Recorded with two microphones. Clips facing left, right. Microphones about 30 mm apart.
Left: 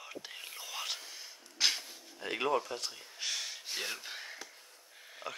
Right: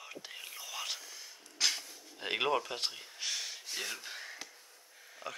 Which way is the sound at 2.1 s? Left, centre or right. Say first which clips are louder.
Even; right.